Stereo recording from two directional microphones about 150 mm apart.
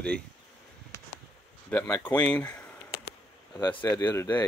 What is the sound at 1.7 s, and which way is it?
Speech, 10° left (ahead or behind).